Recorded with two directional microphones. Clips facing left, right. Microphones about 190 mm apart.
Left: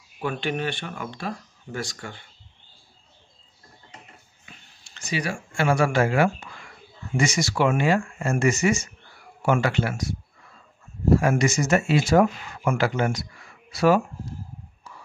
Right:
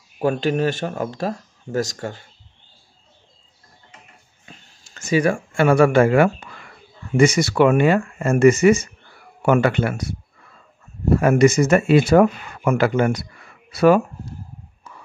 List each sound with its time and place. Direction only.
0.2 s speech: 40° right (ahead or behind)
4.5 s speech: 45° right (ahead or behind)
11.1 s speech: 60° right (ahead or behind)